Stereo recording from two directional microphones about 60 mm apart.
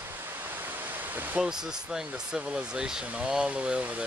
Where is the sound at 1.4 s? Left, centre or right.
Centre.